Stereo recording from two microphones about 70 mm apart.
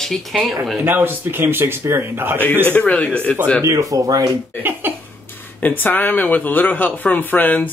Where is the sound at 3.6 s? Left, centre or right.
Right.